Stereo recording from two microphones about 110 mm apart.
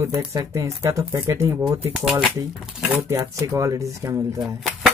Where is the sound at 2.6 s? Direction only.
5° right (ahead or behind).